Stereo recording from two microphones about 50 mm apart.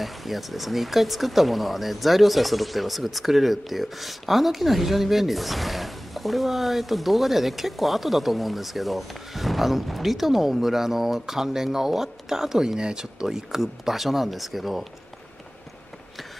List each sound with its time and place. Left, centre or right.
0.0 s speech: centre